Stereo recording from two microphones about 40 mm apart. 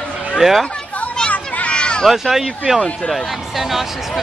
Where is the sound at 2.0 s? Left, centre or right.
Centre.